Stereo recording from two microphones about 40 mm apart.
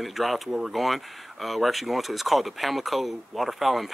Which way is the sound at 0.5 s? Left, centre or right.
Centre.